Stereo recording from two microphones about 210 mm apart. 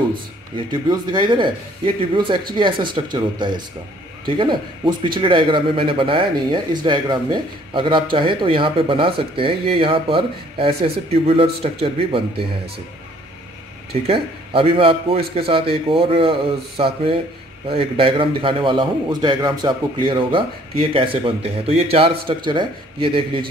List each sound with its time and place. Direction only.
0.8 s speech: 20° right (ahead or behind)
14.0 s speech: 25° right (ahead or behind)